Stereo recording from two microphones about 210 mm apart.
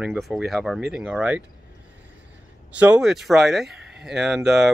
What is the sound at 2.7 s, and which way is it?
Speech, 5° right (ahead or behind).